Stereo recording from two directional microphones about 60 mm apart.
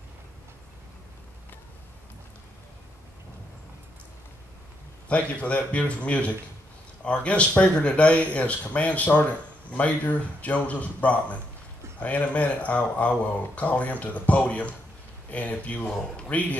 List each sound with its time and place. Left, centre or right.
5.0 s speech: left